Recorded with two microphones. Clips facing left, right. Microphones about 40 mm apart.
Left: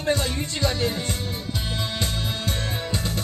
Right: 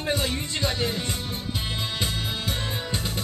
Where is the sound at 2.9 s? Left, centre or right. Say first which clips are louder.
Left 3 dB; centre.